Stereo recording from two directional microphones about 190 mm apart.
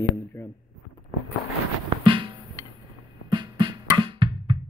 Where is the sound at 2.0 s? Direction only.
25° right (ahead or behind).